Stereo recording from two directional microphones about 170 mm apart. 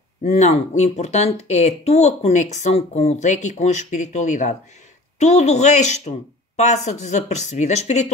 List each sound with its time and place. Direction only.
0.2 s speech: 40° left (ahead or behind)